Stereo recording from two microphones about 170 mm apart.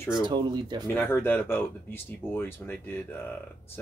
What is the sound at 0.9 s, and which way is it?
Speech, 10° left (ahead or behind).